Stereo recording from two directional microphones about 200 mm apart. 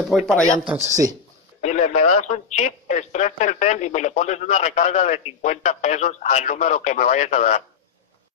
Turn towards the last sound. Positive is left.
turn(degrees=35)  # may be behind; listen again after turning